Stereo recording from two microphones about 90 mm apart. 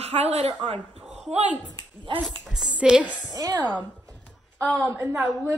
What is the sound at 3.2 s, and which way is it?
Speech, 45° right (ahead or behind).